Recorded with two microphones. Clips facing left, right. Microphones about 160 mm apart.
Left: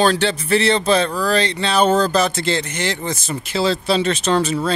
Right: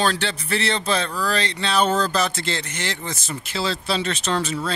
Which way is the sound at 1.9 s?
40° left (ahead or behind).